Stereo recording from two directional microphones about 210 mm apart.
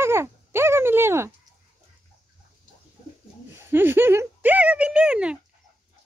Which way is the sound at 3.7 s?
10° right (ahead or behind).